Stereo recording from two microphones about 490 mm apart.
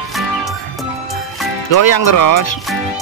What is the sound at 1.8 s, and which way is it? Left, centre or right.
Speech, left.